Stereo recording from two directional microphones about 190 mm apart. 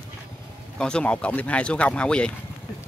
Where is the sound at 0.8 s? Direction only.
5° left (ahead or behind).